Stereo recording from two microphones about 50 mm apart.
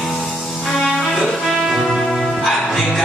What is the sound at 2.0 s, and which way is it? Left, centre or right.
Music, centre.